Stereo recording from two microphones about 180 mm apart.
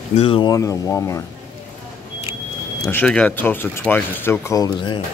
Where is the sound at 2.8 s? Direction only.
10° left (ahead or behind).